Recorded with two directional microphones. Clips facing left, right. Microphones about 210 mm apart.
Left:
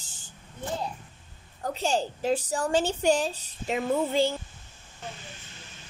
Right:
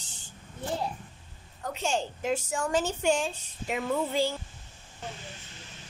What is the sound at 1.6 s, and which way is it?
A woman's voice, 35° left (ahead or behind).